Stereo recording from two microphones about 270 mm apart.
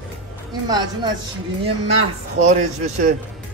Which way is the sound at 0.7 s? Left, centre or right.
Centre.